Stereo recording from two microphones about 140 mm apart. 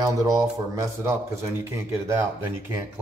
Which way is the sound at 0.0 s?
25° right (ahead or behind).